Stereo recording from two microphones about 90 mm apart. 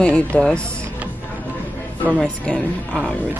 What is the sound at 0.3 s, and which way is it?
Speech, 15° left (ahead or behind).